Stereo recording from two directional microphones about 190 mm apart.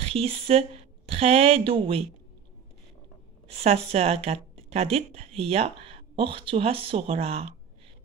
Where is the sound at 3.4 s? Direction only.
30° right (ahead or behind).